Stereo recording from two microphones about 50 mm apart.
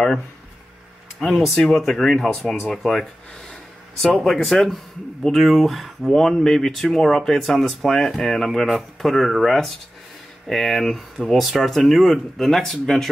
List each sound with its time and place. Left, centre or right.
1.2 s speech: centre
4.2 s speech: centre